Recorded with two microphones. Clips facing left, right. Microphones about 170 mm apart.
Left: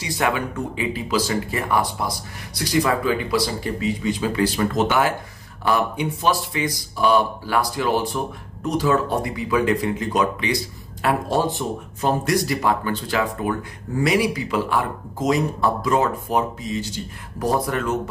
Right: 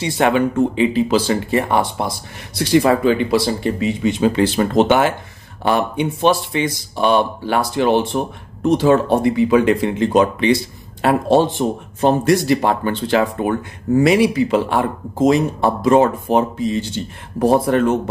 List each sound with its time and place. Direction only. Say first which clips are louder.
0.0 s speech: right 7 dB; 25° right (ahead or behind)
5.9 s speech: right 6 dB; 25° right (ahead or behind)